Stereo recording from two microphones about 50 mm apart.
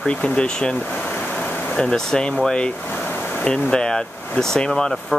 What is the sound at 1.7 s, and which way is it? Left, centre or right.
Speech, centre.